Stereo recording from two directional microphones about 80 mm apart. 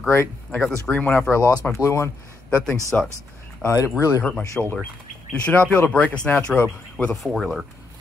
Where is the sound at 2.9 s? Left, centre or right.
Centre.